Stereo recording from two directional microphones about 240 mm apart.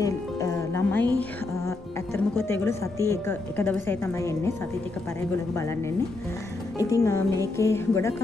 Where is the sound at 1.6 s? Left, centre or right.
Centre.